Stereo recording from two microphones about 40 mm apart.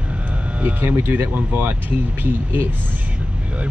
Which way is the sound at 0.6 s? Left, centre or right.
Right.